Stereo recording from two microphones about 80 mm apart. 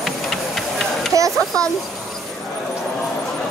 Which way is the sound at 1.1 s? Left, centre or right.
Right.